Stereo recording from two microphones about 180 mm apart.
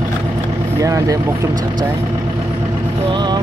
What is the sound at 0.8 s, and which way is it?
Speech, 20° right (ahead or behind).